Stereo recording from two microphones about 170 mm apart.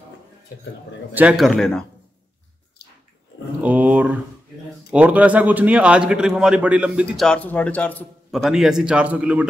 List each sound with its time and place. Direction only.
1.1 s a man's voice: 5° right (ahead or behind)
2.8 s dog: 75° left (ahead or behind)
3.6 s a man's voice: 10° right (ahead or behind)